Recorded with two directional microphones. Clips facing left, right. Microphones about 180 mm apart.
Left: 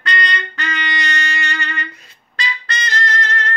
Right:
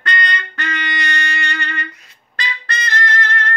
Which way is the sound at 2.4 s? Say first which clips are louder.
Even; 55° right (ahead or behind).